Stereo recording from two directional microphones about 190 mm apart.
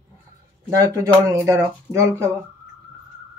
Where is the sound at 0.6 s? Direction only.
15° right (ahead or behind).